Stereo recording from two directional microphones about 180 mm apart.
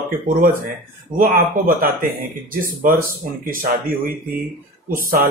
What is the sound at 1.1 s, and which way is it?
Speech, 50° right (ahead or behind).